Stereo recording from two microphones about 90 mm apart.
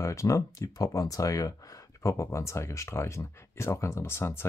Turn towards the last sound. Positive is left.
turn(degrees=30)  # may be behind; listen again after turning